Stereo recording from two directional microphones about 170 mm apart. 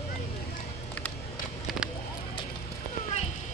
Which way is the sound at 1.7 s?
Centre (ahead or behind).